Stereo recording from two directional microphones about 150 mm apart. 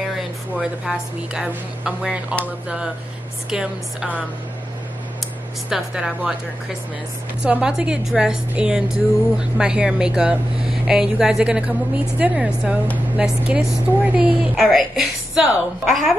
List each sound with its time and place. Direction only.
0.6 s a woman's voice: 5° right (ahead or behind)
5.7 s a woman's voice: 5° right (ahead or behind)
7.4 s a woman's voice: 5° right (ahead or behind)